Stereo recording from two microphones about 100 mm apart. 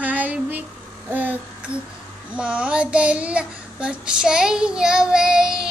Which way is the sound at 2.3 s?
10° right (ahead or behind).